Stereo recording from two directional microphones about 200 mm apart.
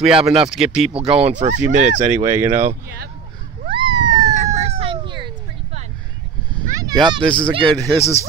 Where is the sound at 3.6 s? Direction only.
25° right (ahead or behind).